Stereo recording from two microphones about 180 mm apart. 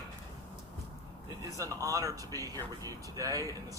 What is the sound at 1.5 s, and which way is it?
Speech, 20° right (ahead or behind).